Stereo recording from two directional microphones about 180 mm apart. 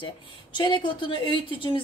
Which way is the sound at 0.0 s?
25° left (ahead or behind).